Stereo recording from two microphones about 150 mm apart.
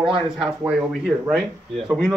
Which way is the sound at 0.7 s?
5° right (ahead or behind).